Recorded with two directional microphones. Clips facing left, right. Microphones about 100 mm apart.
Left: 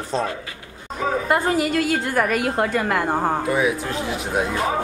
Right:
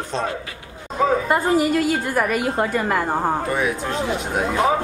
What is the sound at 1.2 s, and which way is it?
A woman's voice, centre (ahead or behind).